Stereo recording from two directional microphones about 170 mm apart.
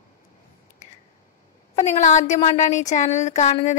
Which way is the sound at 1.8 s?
45° left (ahead or behind).